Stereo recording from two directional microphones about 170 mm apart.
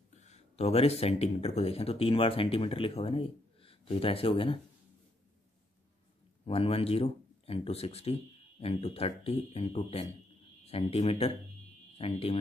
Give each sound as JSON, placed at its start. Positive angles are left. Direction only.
{"t": 0.2, "sound": "speech", "side_deg": 40}
{"t": 6.4, "sound": "speech", "side_deg": 35}